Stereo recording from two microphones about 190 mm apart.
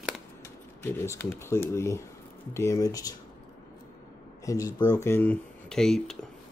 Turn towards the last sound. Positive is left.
turn(degrees=5)  # may be behind; listen again after turning